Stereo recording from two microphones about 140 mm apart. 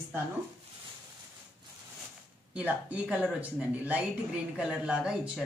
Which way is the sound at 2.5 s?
10° right (ahead or behind).